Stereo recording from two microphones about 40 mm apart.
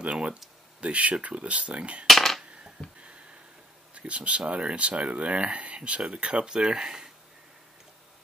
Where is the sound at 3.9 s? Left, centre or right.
Right.